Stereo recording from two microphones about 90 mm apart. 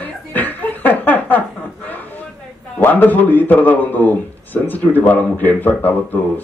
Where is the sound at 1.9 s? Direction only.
20° left (ahead or behind).